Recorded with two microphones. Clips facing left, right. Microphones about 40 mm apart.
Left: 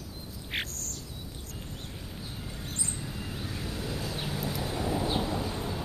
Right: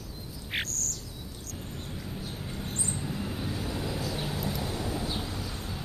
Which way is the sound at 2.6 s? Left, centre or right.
Right.